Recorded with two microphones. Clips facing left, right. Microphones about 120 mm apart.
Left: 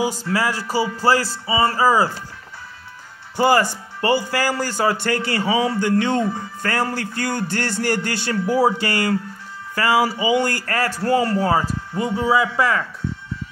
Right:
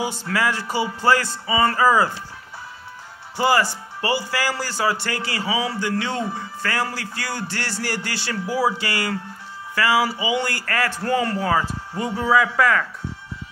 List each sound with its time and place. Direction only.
0.1 s a man's voice: 40° left (ahead or behind)
3.3 s a man's voice: 45° left (ahead or behind)
12.2 s speech: 25° left (ahead or behind)